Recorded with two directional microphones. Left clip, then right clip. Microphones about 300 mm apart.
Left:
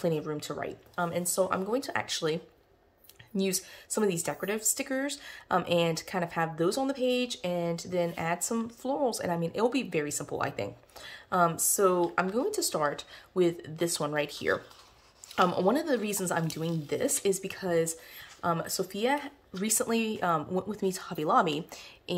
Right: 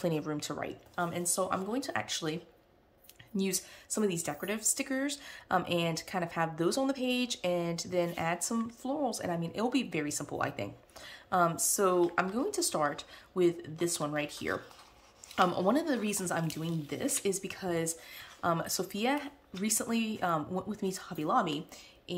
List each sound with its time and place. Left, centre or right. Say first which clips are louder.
0.0 s speech: left 3 dB; centre